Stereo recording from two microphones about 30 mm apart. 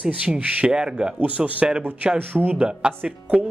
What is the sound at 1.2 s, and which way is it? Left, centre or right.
Speech, right.